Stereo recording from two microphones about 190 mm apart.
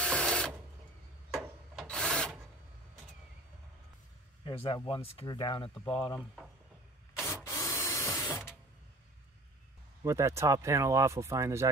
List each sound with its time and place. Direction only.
0.0 s tools: 5° left (ahead or behind)
1.3 s wood: 5° right (ahead or behind)
4.6 s speech: 25° left (ahead or behind)
5.8 s speech: 5° left (ahead or behind)
7.4 s tools: 15° left (ahead or behind)
10.0 s speech: 15° right (ahead or behind)